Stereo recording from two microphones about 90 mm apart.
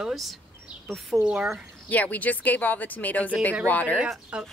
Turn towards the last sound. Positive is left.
turn(degrees=-10)  # may be behind; listen again after turning